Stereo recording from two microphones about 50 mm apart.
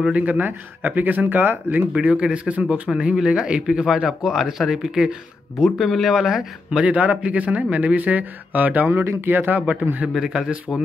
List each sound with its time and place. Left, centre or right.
0.1 s speech: right
2.0 s speech: right
6.8 s speech: right
8.9 s speech: right
9.2 s speech: right
10.1 s speech: centre
10.7 s speech: left